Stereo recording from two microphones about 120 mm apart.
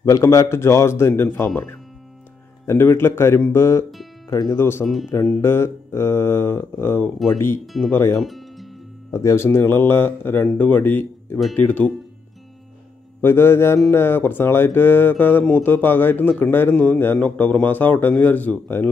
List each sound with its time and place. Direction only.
0.0 s speech: 25° left (ahead or behind)
7.6 s speech: centre (ahead or behind)
7.9 s speech: 20° left (ahead or behind)
8.2 s music: centre (ahead or behind)
9.1 s speech: 25° left (ahead or behind)
13.2 s speech: 20° left (ahead or behind)